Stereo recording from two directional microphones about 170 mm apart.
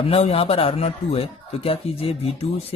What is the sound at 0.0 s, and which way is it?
Speech, 35° left (ahead or behind).